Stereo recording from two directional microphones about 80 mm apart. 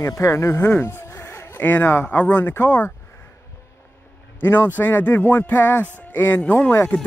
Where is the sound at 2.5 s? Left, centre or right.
Left.